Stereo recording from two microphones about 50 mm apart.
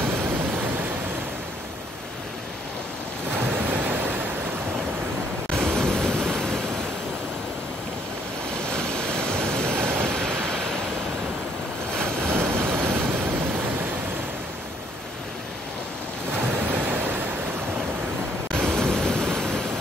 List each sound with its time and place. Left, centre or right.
0.0 s a sound: right
3.5 s waves: right
5.5 s waves: centre
8.5 s waves: centre
9.7 s waves: right
10.0 s a sound: centre
11.9 s waves: centre
12.2 s vehicle: right
13.2 s waves: right
16.3 s waves: right
18.7 s waves: centre